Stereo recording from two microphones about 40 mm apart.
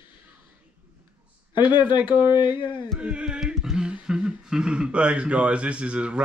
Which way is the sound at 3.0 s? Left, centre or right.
Right.